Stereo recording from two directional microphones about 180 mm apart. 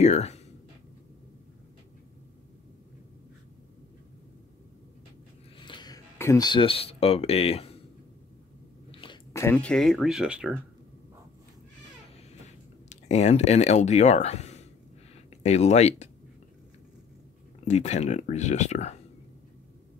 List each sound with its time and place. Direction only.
0.0 s speech: 40° left (ahead or behind)
5.6 s cough: 25° left (ahead or behind)
6.1 s speech: 15° left (ahead or behind); by 7.7 s 35° left (ahead or behind)
9.0 s a sound: 25° left (ahead or behind)
9.4 s speech: 10° left (ahead or behind)
12.9 s speech: 35° left (ahead or behind)
17.6 s speech: 40° left (ahead or behind)